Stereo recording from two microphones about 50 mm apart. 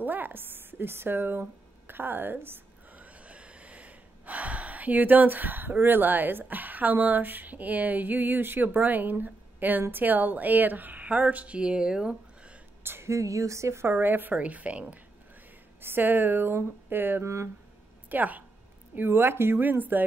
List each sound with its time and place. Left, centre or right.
0.0 s speech: right
3.0 s gasp: right
12.8 s a sound: right
13.1 s speech: right
13.8 s a woman's voice: right
14.4 s a woman's voice: right
15.8 s speech: right
17.2 s speech: right
18.1 s a woman's voice: right
18.9 s speech: right
19.6 s a woman's voice: right